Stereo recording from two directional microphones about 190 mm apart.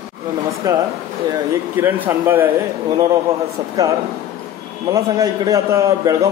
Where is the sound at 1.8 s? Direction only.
10° right (ahead or behind).